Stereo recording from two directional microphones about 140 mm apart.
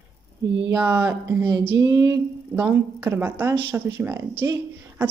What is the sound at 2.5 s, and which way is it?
A woman's voice, 10° right (ahead or behind).